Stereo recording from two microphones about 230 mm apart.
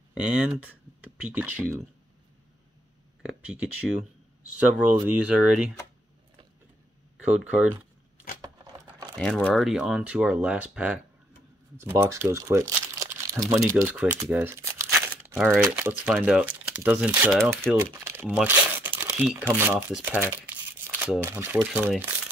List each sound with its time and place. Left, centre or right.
0.2 s speech: centre
4.6 s speech: centre
7.2 s speech: centre
8.4 s a sound: centre
9.1 s speech: centre
12.3 s crumpling: centre
13.8 s speech: centre
14.3 s crumpling: centre
15.5 s speech: centre